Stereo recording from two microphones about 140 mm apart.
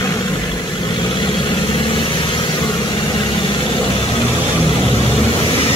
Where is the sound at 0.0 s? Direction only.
25° left (ahead or behind).